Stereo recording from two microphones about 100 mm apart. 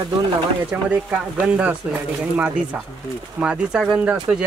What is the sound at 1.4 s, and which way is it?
Speech, 15° right (ahead or behind).